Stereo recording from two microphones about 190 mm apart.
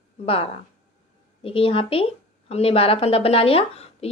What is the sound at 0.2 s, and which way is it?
A woman's voice, 30° left (ahead or behind).